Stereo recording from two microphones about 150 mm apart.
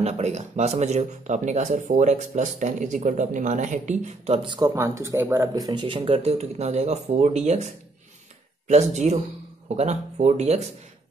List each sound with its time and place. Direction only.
0.0 s speech: 50° right (ahead or behind)
4.4 s speech: 30° right (ahead or behind)
5.5 s speech: 30° right (ahead or behind); by 10.7 s 45° right (ahead or behind)